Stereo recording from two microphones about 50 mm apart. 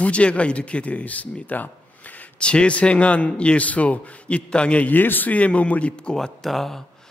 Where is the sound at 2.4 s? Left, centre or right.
Left.